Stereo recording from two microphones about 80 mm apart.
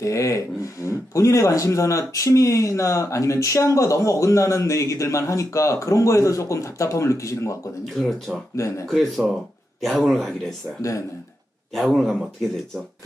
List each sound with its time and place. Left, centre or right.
0.0 s speech: left
7.9 s speech: centre
8.5 s speech: left
8.8 s speech: centre
10.8 s speech: left
11.7 s speech: centre